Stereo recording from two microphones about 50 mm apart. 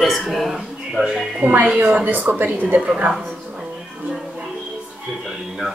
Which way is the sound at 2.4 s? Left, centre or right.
Right.